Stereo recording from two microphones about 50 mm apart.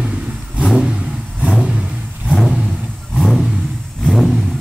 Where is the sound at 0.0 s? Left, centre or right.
Right.